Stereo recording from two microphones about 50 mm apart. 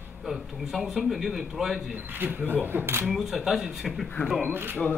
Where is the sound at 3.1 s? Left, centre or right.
Centre.